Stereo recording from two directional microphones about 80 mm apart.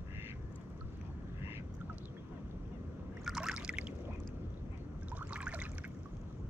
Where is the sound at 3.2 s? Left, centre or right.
Centre.